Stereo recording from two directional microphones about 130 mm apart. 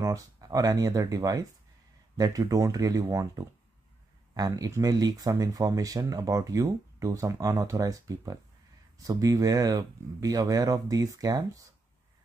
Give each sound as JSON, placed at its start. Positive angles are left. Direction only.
{"t": 0.0, "sound": "speech", "side_deg": -25}